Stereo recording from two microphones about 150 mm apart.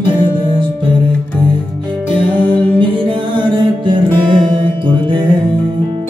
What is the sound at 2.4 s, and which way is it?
Music, 35° right (ahead or behind).